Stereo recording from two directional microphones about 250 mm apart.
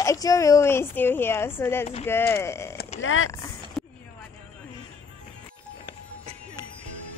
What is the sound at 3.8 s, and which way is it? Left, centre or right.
Music, centre.